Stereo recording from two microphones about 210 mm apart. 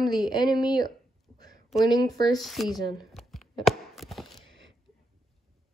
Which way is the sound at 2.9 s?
Centre (ahead or behind).